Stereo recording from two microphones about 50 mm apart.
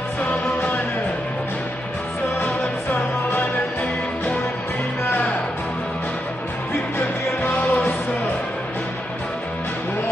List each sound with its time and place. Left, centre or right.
2.4 s music: left
7.4 s music: left